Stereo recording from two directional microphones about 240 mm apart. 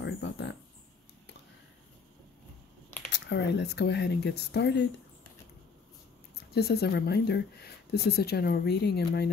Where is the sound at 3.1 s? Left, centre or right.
Left.